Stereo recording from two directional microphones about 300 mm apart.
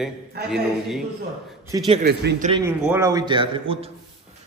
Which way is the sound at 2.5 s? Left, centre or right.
Centre.